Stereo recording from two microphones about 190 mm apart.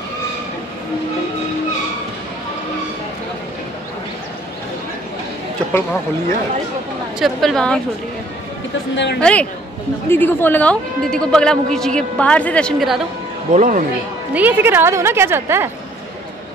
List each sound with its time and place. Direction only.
5.7 s speech: 15° left (ahead or behind)
7.2 s a woman's voice: centre (ahead or behind)
8.9 s a woman's voice: 65° left (ahead or behind)
9.2 s a woman's voice: 5° left (ahead or behind)
13.5 s speech: 40° right (ahead or behind)
14.3 s speech: 10° right (ahead or behind)